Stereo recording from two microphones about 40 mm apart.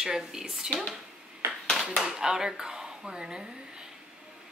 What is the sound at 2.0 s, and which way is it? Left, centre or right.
A woman's voice, centre.